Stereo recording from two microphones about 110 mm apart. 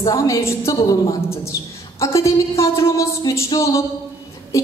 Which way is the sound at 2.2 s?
25° left (ahead or behind).